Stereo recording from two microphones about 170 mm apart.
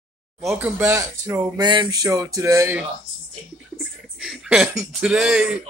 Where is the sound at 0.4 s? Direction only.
5° right (ahead or behind).